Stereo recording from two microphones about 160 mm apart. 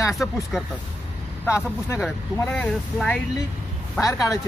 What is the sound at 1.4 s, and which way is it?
Speech, 15° left (ahead or behind).